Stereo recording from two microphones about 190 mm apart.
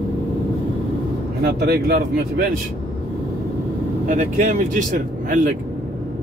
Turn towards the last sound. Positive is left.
turn(degrees=-40)  # may be behind; listen again after turning